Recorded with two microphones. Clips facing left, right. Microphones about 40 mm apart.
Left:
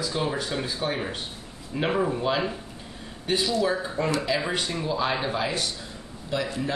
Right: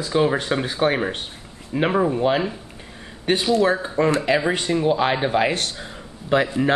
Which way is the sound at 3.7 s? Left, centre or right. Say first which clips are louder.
Right 6 dB; right.